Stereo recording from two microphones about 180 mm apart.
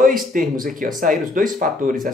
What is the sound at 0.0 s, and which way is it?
Speech, 50° right (ahead or behind).